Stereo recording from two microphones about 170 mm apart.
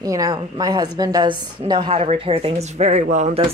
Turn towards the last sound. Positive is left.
turn(degrees=-45)  # may be behind; listen again after turning